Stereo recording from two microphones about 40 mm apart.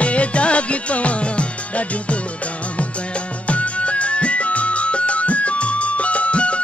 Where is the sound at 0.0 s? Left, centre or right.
Left.